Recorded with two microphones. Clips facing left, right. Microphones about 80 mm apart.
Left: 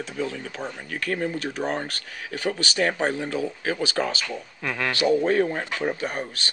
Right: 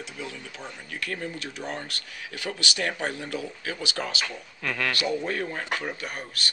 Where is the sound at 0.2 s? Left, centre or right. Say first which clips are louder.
Left 9 dB; left.